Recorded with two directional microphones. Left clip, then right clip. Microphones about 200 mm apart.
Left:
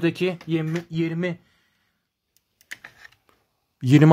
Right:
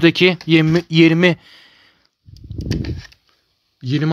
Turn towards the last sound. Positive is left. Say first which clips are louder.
# left 5 dB
turn(degrees=25)  # may be behind; listen again after turning